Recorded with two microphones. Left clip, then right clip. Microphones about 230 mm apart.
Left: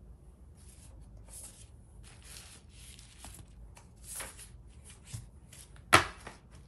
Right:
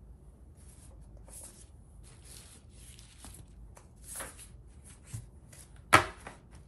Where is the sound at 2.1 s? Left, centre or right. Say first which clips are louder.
Left 3 dB; centre.